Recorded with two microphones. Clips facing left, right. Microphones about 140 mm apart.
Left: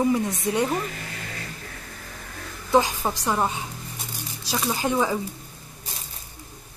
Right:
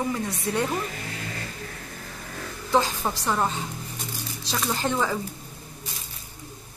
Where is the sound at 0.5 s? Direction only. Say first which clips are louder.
Left 2 dB; 15° left (ahead or behind).